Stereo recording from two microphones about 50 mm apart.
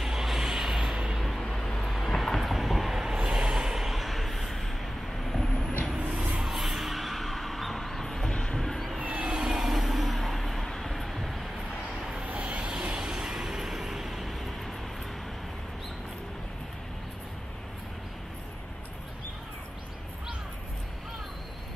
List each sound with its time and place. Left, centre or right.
0.0 s vehicle: centre
1.4 s vehicle: centre
6.4 s a sound: centre
8.5 s music: centre
9.0 s vehicle: right
9.3 s vehicle: centre
12.3 s vehicle: right; by 14.5 s centre